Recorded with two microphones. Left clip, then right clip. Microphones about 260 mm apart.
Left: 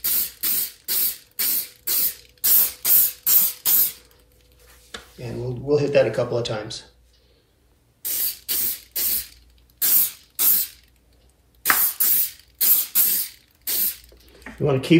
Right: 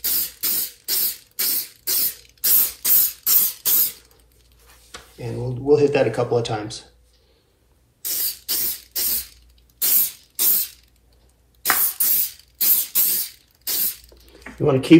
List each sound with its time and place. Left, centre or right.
0.1 s a sound: centre
0.8 s spray: centre
5.2 s speech: right
8.1 s spray: centre
14.6 s speech: centre